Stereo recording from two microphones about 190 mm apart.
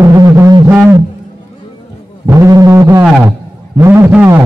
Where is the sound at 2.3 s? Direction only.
15° right (ahead or behind).